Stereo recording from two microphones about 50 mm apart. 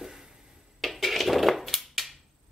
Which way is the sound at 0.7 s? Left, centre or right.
Centre.